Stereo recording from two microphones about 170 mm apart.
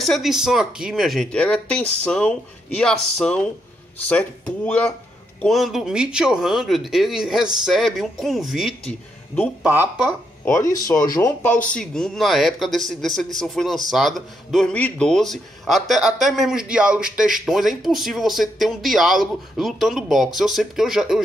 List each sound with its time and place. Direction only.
0.0 s speech: centre (ahead or behind)
4.6 s speech: 5° left (ahead or behind)
9.7 s speech: 10° right (ahead or behind)
10.4 s speech: 15° left (ahead or behind); by 21.2 s centre (ahead or behind)